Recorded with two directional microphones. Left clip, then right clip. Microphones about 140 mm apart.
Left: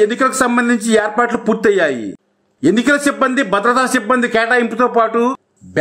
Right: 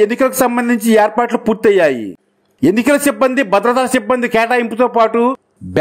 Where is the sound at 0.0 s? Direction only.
35° right (ahead or behind).